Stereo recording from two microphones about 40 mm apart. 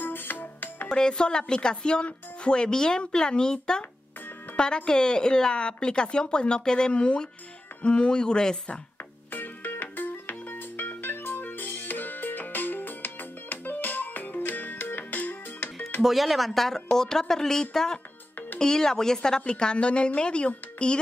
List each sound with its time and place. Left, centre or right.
0.0 s music: left
0.8 s speech: left
9.3 s music: left
11.4 s music: left
16.0 s speech: centre; by 21.0 s left